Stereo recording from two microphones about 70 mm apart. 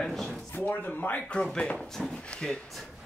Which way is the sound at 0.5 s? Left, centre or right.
Left.